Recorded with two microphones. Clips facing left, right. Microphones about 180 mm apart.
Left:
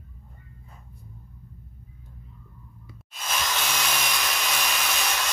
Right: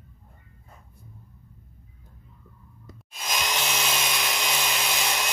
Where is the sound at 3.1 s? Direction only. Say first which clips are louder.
Even; 15° right (ahead or behind).